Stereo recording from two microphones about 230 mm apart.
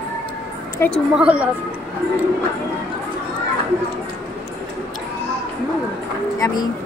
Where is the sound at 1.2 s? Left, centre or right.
Centre.